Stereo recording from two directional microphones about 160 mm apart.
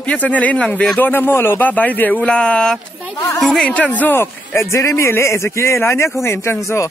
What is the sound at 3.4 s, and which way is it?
Speech, 5° left (ahead or behind).